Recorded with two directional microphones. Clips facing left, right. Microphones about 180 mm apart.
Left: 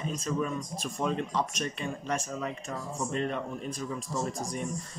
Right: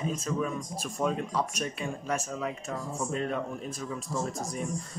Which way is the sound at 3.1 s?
5° right (ahead or behind).